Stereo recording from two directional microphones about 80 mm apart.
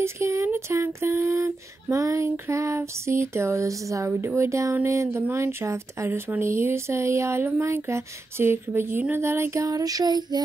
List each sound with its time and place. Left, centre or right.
0.0 s speech: right
4.1 s speech: right
9.1 s female singing: right